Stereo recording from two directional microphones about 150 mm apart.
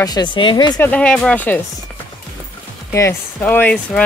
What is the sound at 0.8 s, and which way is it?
Speech, 10° left (ahead or behind).